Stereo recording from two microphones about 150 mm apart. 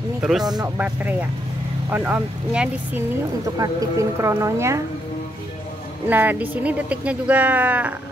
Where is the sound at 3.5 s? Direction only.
25° right (ahead or behind).